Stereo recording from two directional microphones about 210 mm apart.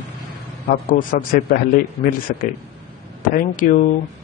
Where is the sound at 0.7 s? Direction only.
40° left (ahead or behind).